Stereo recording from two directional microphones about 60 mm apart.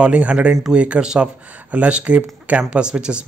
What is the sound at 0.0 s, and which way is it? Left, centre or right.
Speech, centre.